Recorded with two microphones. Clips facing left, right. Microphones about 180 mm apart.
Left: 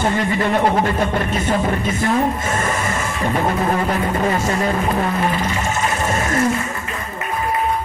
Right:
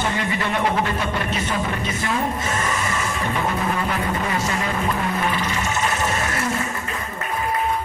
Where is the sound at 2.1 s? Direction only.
45° left (ahead or behind).